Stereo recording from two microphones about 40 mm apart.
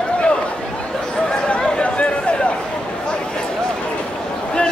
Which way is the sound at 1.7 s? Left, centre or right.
Left.